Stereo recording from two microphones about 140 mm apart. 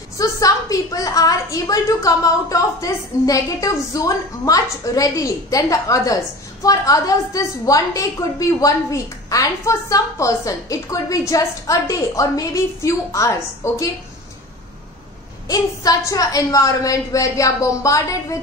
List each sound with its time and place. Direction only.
0.2 s a woman's voice: 25° left (ahead or behind)
15.4 s a woman's voice: 25° left (ahead or behind)